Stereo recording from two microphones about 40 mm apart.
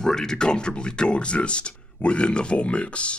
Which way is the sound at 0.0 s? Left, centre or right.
Centre.